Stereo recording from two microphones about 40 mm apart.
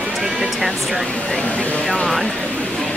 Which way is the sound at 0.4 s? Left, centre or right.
Centre.